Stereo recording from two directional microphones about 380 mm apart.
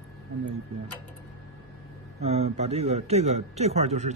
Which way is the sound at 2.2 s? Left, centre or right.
Centre.